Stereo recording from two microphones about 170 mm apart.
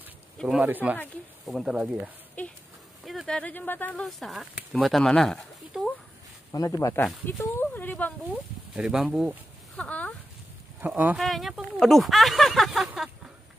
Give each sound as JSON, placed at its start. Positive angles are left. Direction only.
{"t": 0.4, "sound": "speech", "side_deg": -5}
{"t": 2.4, "sound": "speech", "side_deg": 10}
{"t": 6.5, "sound": "speech", "side_deg": 20}
{"t": 8.7, "sound": "speech", "side_deg": -5}
{"t": 9.8, "sound": "speech", "side_deg": 10}
{"t": 10.8, "sound": "speech", "side_deg": -10}